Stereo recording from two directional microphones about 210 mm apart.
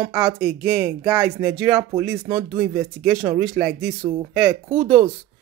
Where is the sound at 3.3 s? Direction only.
15° right (ahead or behind).